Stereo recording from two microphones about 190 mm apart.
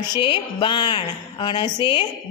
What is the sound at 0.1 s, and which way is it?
A woman's voice, 25° left (ahead or behind).